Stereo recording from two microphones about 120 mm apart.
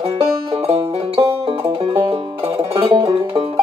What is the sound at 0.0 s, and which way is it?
Music, 50° right (ahead or behind).